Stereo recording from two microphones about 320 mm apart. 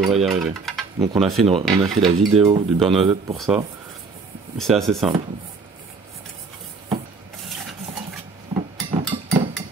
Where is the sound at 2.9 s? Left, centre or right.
Centre.